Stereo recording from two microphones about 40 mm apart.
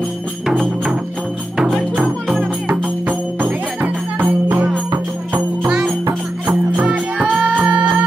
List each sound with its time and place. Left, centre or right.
2.7 s music: right
5.7 s music: centre
6.9 s music: right